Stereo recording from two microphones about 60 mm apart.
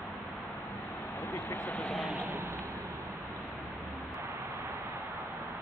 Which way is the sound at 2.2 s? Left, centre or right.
Right.